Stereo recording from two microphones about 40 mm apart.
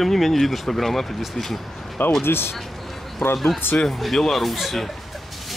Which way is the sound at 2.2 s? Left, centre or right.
Left.